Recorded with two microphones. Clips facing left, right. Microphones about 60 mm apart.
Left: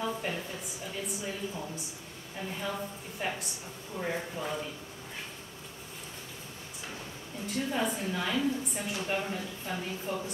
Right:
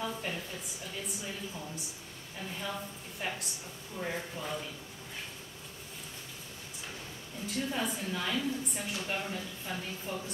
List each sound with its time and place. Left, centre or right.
0.0 s speech: centre
3.2 s speech: centre
7.4 s a woman's voice: centre